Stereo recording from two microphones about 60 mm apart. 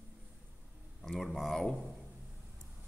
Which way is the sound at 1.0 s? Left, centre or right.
Centre.